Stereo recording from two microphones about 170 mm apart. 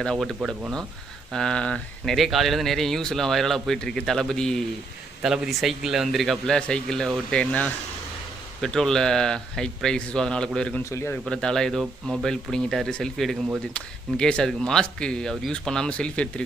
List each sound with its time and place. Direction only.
0.0 s speech: 5° left (ahead or behind)
10.9 s a man's voice: 15° left (ahead or behind)
11.2 s speech: 5° left (ahead or behind)